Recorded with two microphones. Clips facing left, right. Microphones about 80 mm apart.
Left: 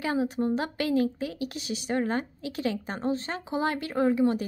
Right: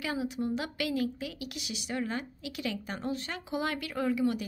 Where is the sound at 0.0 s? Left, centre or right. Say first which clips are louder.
Left 6 dB; left.